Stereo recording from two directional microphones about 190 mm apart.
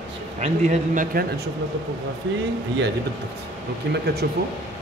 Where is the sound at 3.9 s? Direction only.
60° right (ahead or behind).